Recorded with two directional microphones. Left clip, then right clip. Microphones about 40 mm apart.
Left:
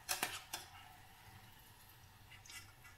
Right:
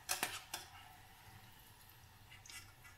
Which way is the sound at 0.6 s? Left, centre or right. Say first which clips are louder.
Even; centre.